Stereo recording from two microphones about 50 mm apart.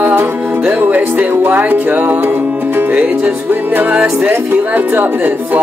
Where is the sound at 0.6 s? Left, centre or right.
Right.